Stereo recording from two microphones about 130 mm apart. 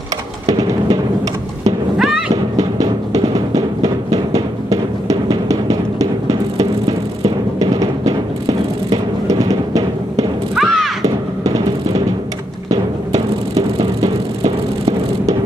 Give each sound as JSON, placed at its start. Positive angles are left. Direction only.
{"t": 0.5, "sound": "music", "side_deg": -30}
{"t": 2.0, "sound": "thunder", "side_deg": -5}
{"t": 2.5, "sound": "music", "side_deg": -30}
{"t": 10.5, "sound": "a sound", "side_deg": 0}
{"t": 12.6, "sound": "music", "side_deg": -30}